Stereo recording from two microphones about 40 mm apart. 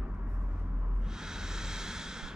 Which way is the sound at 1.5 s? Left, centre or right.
Centre.